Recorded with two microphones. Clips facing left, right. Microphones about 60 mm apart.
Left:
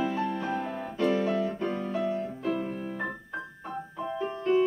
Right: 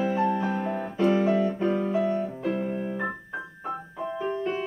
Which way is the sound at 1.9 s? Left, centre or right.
Centre.